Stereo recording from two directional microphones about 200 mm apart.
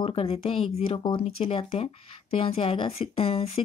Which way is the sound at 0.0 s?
30° left (ahead or behind).